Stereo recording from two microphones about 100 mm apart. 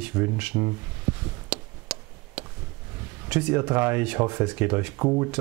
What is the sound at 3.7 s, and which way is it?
Speech, 20° right (ahead or behind).